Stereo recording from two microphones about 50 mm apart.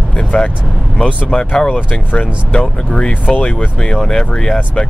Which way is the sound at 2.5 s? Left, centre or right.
Left.